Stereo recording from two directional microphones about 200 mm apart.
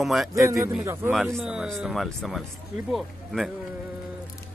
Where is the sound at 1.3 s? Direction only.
Centre (ahead or behind).